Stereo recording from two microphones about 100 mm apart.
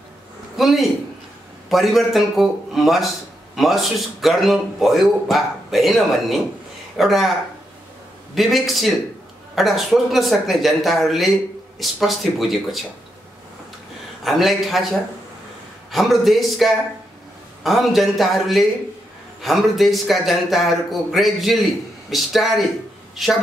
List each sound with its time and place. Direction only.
0.6 s a man's voice: centre (ahead or behind)
8.4 s a man's voice: centre (ahead or behind)
14.2 s a man's voice: centre (ahead or behind)